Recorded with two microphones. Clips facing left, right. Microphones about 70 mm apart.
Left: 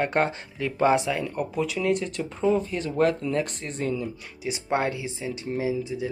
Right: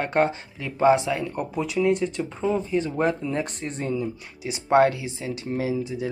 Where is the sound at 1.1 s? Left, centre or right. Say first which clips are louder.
Right 1 dB; centre.